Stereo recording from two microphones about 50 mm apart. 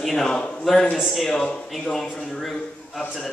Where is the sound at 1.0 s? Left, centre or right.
Centre.